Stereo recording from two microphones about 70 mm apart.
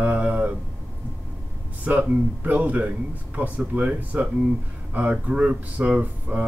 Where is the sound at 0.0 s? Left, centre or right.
Right.